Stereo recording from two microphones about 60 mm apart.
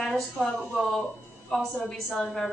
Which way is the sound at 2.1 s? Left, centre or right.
Centre.